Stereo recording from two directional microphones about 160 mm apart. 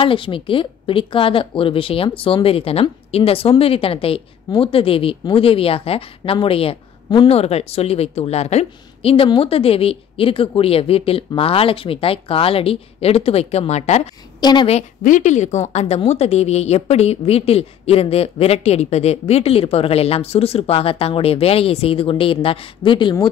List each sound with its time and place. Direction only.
0.0 s a woman's voice: 35° left (ahead or behind)
14.4 s a woman's voice: 30° left (ahead or behind)
14.7 s a woman's voice: 50° left (ahead or behind); by 23.1 s 30° left (ahead or behind)